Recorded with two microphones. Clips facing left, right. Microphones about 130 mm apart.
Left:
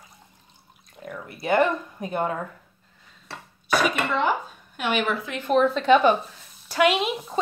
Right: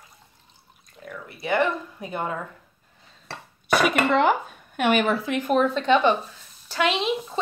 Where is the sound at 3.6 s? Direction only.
65° right (ahead or behind).